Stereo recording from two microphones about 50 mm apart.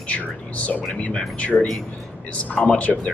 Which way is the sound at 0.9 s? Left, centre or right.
Left.